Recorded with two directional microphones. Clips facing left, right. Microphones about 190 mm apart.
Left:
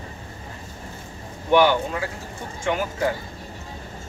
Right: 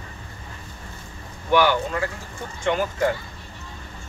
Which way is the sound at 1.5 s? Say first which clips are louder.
Left 2 dB; 20° left (ahead or behind).